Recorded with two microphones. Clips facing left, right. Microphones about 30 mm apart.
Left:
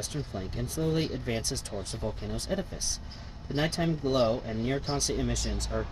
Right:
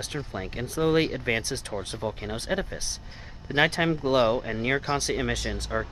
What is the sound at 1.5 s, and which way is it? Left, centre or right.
Speech, right.